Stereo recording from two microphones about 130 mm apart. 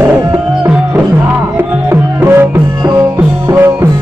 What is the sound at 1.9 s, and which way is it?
Music, 20° right (ahead or behind).